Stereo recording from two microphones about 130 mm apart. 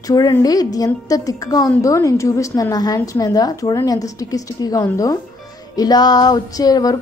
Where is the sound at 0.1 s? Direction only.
30° left (ahead or behind).